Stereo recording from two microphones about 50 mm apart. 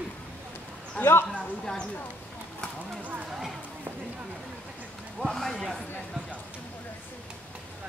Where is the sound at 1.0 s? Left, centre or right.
Left.